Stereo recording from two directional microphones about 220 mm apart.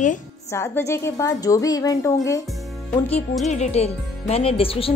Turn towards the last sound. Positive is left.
turn(degrees=25)  # may be behind; listen again after turning